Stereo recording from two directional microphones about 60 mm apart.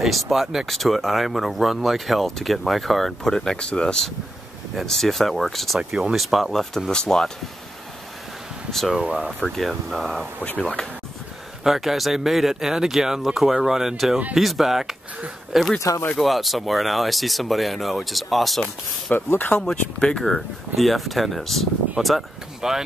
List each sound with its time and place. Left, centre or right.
0.0 s speech: centre
5.8 s speech: centre
6.1 s speech: centre
8.9 s speech: centre
9.6 s speech: centre
11.6 s speech: centre
19.3 s speech: left
19.6 s speech: centre
20.3 s speech: centre